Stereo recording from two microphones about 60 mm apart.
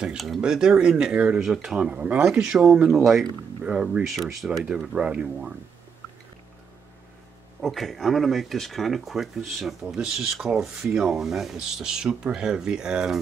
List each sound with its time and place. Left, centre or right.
0.4 s speech: centre
1.4 s speech: centre
1.8 s speech: right
4.1 s speech: centre
4.6 s speech: centre
7.6 s speech: centre